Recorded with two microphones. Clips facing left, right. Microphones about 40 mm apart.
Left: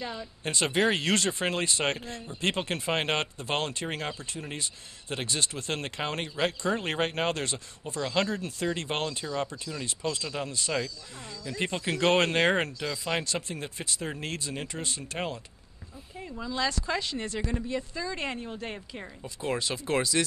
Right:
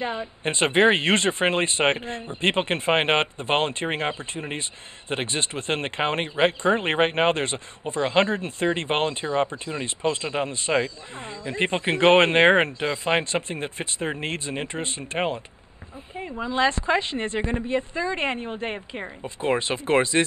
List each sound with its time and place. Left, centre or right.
0.0 s speech: right